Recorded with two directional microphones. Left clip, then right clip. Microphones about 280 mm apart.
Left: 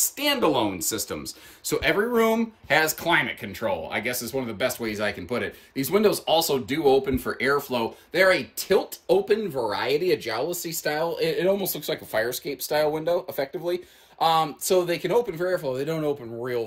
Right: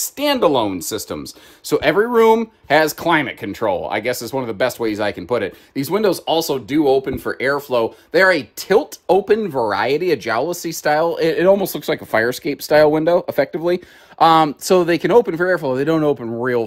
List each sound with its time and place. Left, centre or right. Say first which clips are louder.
0.0 s speech: right 7 dB; centre